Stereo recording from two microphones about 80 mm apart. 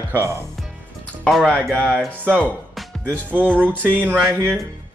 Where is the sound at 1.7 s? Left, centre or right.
Centre.